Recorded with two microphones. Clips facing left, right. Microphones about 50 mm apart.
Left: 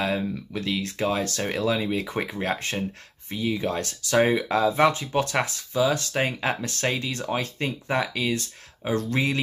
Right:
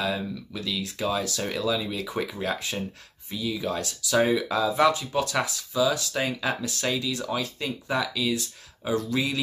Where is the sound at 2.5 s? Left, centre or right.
Left.